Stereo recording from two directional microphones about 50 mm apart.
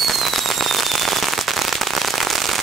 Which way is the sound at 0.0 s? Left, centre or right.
Centre.